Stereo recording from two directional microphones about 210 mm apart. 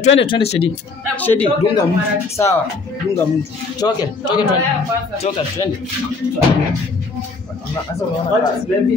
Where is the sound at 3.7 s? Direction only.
20° left (ahead or behind).